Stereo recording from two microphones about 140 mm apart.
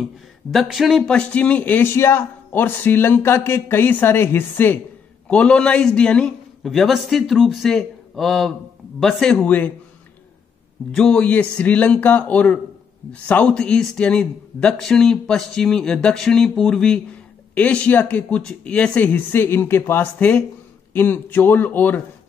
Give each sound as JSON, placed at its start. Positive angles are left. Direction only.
{"t": 0.5, "sound": "a man's voice", "side_deg": 0}
{"t": 11.0, "sound": "speech", "side_deg": 5}